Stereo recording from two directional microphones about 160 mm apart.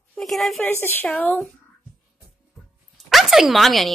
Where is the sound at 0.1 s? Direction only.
Centre (ahead or behind).